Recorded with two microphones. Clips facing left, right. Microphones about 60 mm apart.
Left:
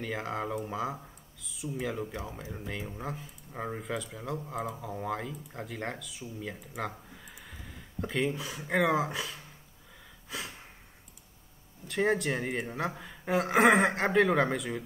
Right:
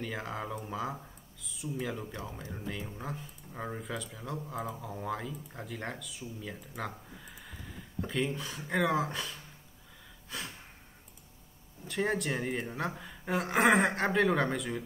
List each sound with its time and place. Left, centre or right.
0.0 s speech: centre
3.5 s speech: centre
3.8 s speech: centre
6.8 s a sound: centre
8.0 s speech: centre
11.9 s speech: centre